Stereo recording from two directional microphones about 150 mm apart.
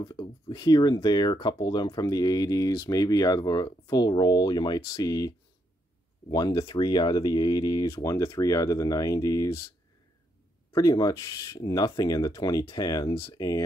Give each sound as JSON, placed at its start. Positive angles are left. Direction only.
{"t": 0.1, "sound": "speech", "side_deg": 30}
{"t": 6.3, "sound": "speech", "side_deg": 25}
{"t": 10.7, "sound": "speech", "side_deg": 25}